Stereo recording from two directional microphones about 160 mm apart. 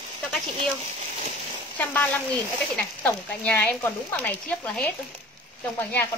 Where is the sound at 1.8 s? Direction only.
10° left (ahead or behind).